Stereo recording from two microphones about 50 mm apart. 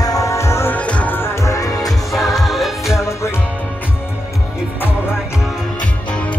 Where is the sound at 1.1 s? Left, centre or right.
Left.